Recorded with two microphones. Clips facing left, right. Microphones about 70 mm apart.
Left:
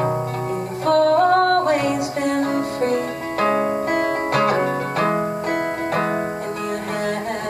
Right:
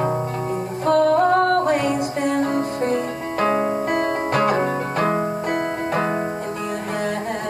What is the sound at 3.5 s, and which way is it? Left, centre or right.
Music, centre.